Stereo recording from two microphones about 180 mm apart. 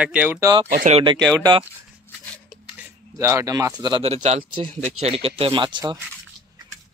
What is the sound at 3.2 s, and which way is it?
Speech, 15° right (ahead or behind).